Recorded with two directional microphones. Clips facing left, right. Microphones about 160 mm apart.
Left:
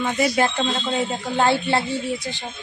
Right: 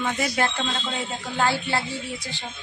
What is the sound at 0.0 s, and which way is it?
A man's voice, 15° left (ahead or behind).